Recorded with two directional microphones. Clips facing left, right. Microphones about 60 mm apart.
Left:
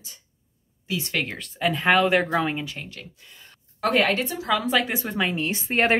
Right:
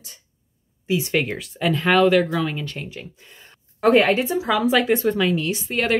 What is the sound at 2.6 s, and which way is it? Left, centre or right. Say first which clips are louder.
Speech: right 3 dB; centre.